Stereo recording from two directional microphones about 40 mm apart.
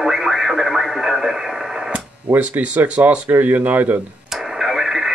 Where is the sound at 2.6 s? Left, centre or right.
Right.